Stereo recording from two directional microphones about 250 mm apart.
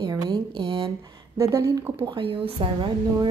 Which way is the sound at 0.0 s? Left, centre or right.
Centre.